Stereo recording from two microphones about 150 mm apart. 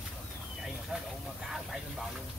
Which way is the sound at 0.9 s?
Centre (ahead or behind).